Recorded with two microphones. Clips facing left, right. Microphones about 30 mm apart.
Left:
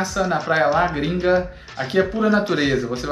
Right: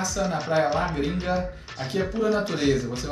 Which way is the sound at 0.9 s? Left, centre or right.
Left.